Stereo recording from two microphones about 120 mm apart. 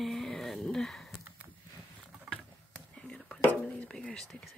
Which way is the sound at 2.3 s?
5° left (ahead or behind).